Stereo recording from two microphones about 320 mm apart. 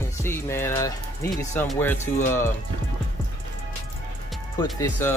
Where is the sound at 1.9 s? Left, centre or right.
Left.